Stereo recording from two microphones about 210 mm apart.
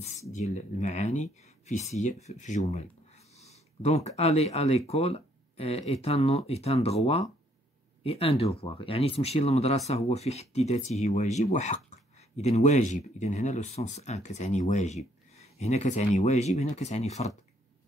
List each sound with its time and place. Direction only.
0.3 s speech: 35° left (ahead or behind)